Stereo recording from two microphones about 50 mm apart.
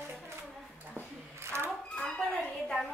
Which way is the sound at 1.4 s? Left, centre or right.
Right.